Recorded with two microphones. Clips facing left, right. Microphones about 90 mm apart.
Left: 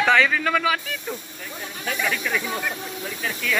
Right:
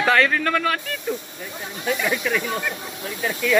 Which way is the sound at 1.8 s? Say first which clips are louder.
Right 3 dB; 15° right (ahead or behind).